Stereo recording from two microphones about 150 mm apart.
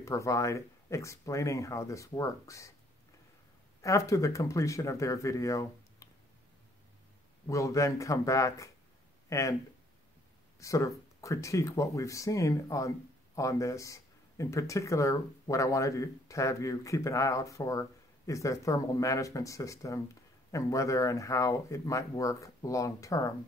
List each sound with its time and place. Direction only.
0.0 s speech: 20° left (ahead or behind)
3.8 s speech: 20° left (ahead or behind)
7.4 s speech: 20° left (ahead or behind)
10.6 s speech: 20° left (ahead or behind)